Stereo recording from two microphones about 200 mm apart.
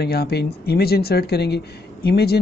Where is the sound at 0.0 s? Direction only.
55° left (ahead or behind).